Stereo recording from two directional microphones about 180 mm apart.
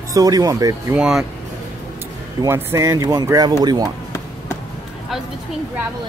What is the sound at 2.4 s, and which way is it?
Speech, 15° right (ahead or behind).